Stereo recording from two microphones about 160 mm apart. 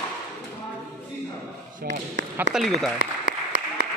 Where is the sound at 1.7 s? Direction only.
60° right (ahead or behind).